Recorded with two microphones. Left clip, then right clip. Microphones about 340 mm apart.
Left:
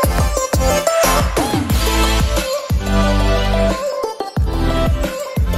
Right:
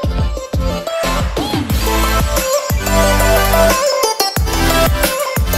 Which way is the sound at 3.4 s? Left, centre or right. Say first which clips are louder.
Right 6 dB; right.